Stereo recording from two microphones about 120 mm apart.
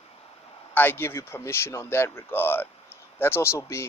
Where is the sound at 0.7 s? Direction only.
20° left (ahead or behind).